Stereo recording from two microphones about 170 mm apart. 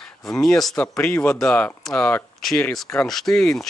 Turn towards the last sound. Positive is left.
turn(degrees=5)  # may be behind; listen again after turning